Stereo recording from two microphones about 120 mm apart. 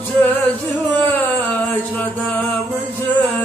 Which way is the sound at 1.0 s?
15° left (ahead or behind).